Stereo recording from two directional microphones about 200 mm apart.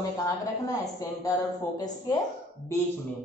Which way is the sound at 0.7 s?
15° left (ahead or behind).